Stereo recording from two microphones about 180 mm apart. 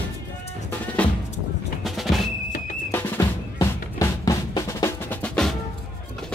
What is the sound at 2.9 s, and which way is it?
Drum, 20° left (ahead or behind).